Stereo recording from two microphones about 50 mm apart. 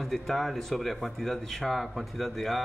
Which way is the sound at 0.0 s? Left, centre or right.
Centre.